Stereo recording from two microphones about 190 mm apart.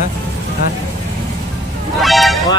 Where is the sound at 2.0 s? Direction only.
Centre (ahead or behind).